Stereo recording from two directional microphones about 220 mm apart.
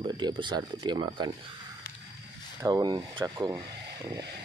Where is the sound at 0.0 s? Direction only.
20° right (ahead or behind).